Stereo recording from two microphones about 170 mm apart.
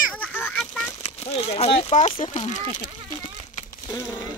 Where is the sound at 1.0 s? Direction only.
35° left (ahead or behind).